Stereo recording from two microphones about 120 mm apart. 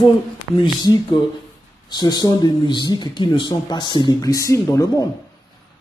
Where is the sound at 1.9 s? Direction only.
35° left (ahead or behind).